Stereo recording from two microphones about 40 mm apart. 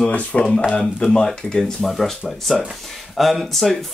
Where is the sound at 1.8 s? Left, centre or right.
Centre.